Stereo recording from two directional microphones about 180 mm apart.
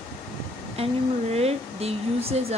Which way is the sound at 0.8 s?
35° right (ahead or behind).